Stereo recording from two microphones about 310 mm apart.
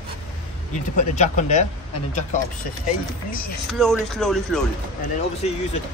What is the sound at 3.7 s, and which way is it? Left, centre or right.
Speech, centre.